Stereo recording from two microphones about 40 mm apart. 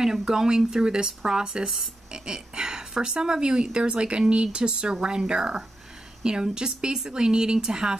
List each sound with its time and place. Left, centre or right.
0.0 s speech: centre